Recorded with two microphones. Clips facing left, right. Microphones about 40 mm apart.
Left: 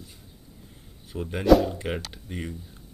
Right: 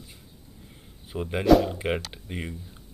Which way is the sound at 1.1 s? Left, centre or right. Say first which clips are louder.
Even; centre.